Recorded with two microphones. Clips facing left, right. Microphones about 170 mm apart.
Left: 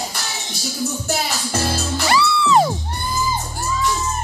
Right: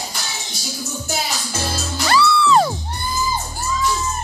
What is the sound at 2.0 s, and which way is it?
Music, 20° left (ahead or behind).